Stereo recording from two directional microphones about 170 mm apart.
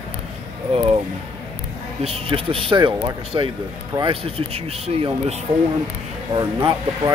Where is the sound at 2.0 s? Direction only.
35° right (ahead or behind).